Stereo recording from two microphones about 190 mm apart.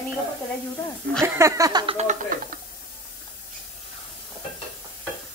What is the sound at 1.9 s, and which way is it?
Speech, 45° right (ahead or behind).